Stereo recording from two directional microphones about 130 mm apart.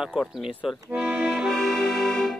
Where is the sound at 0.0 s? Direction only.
5° right (ahead or behind).